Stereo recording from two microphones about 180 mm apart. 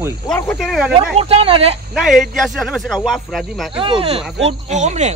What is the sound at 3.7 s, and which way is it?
Speech, 30° right (ahead or behind).